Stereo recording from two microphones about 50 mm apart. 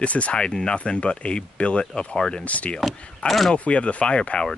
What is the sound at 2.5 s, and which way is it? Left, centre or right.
Speech, left.